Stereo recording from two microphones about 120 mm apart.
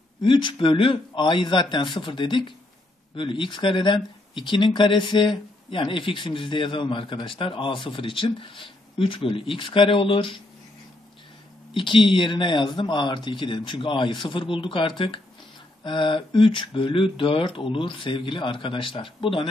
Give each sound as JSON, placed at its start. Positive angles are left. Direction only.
{"t": 0.2, "sound": "speech", "side_deg": 40}
{"t": 11.7, "sound": "speech", "side_deg": 45}